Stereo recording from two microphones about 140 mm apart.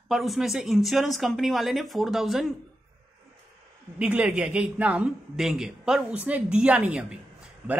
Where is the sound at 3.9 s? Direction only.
10° right (ahead or behind).